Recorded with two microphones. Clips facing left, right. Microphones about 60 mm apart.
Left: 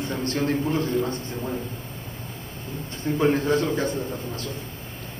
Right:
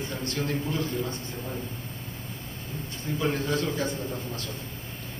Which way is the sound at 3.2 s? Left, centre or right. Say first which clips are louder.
Left 6 dB; left.